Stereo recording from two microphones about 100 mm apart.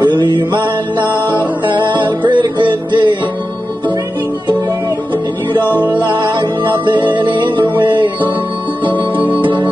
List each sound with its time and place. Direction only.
0.0 s music: 45° right (ahead or behind)
5.6 s music: 20° left (ahead or behind)
6.0 s music: 50° right (ahead or behind)
9.1 s music: 15° right (ahead or behind)